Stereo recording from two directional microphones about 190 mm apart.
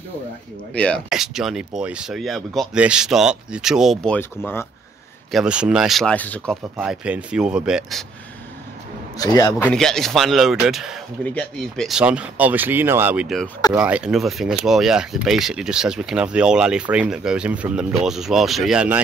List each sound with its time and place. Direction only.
0.7 s speech: 5° left (ahead or behind)
5.3 s speech: 5° right (ahead or behind)
6.8 s speech: 5° right (ahead or behind)
9.2 s a man's voice: 20° left (ahead or behind)
9.8 s speech: centre (ahead or behind)